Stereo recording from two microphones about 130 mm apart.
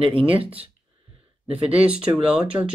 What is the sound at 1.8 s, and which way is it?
Speech, 10° right (ahead or behind).